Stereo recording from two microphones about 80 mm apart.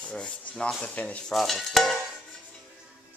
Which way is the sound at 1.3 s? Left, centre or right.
Centre.